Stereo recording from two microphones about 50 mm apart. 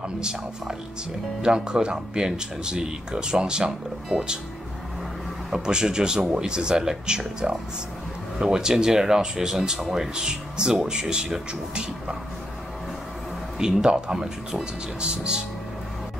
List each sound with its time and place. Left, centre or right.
0.2 s speech: centre
5.5 s speech: centre
13.6 s speech: centre